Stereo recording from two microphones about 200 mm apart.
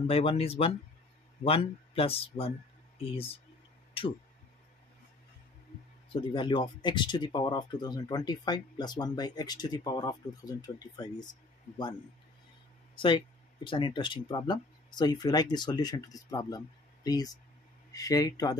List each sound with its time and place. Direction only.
0.0 s speech: 30° left (ahead or behind)
6.1 s speech: 25° left (ahead or behind)
12.9 s speech: 25° left (ahead or behind)